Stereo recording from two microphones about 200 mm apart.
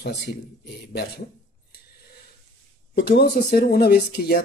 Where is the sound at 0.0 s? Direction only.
55° left (ahead or behind).